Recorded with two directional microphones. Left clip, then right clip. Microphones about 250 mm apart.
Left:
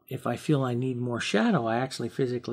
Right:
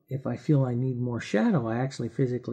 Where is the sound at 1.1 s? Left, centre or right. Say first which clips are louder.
Left 1 dB; right.